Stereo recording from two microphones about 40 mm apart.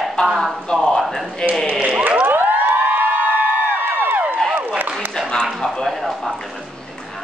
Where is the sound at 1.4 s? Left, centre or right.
Left.